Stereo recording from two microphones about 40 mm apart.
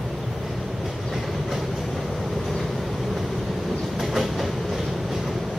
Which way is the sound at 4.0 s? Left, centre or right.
Centre.